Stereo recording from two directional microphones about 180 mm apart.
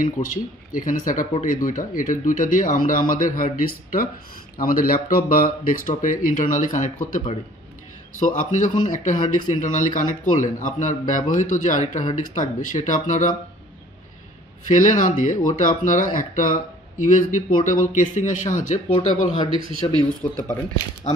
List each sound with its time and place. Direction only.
0.0 s speech: 50° left (ahead or behind)
14.7 s speech: 45° left (ahead or behind)
18.9 s speech: 25° left (ahead or behind)
19.5 s speech: 30° right (ahead or behind)
20.2 s speech: 15° left (ahead or behind)